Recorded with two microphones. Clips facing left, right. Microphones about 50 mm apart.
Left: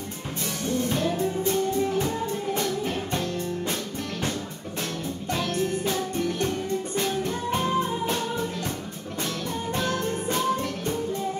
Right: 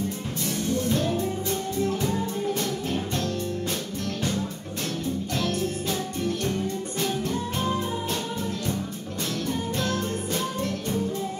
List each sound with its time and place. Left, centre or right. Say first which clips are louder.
0.8 s music: left 1 dB; left
5.3 s music: left 4 dB; centre
7.0 s music: right 2 dB; left
9.8 s music: left 1 dB; left